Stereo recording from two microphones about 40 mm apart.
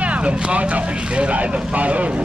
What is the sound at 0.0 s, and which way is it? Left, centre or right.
Speech, right.